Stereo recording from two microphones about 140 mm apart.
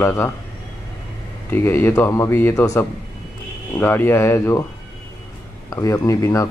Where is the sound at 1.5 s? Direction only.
15° left (ahead or behind).